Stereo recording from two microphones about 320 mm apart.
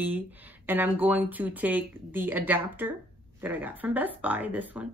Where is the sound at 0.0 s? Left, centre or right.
Centre.